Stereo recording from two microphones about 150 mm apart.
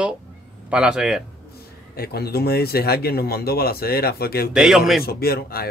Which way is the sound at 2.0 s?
90° left.